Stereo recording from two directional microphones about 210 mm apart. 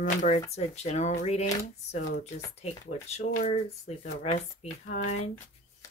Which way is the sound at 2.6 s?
30° left (ahead or behind).